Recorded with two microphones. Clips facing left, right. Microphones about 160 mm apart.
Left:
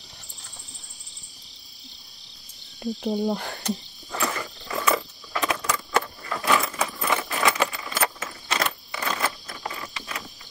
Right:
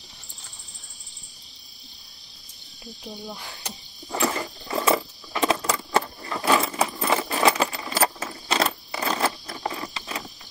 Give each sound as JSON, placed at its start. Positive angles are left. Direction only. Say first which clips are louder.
{"t": 3.2, "sound": "speech", "louder": "left 12 dB", "side_deg": 55}
{"t": 4.1, "sound": "keys jangling", "louder": "right 3 dB", "side_deg": -30}